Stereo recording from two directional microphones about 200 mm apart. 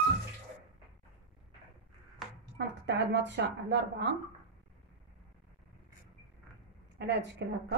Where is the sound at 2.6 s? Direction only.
60° right (ahead or behind).